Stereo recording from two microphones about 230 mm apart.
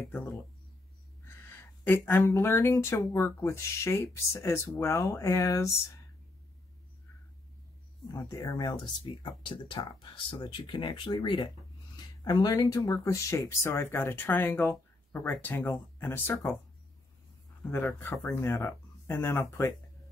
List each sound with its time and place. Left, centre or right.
0.1 s speech: centre
1.9 s speech: centre
8.1 s speech: centre
17.6 s speech: centre